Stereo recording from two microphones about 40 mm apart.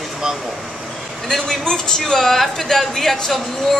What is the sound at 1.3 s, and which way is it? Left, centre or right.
Speech, centre.